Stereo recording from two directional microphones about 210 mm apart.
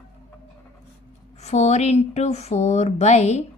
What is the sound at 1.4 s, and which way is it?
Speech, 30° left (ahead or behind).